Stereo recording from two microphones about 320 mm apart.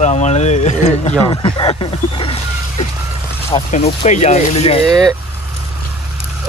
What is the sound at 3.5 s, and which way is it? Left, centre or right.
Speech, centre.